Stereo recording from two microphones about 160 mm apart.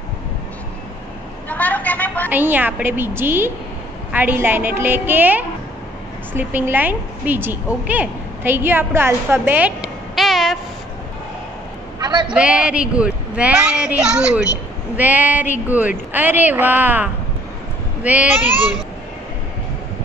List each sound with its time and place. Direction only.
1.5 s vehicle: 10° left (ahead or behind)
2.2 s a woman's voice: 10° right (ahead or behind)
12.0 s a man's voice: 30° right (ahead or behind)
12.4 s a woman's voice: 5° right (ahead or behind)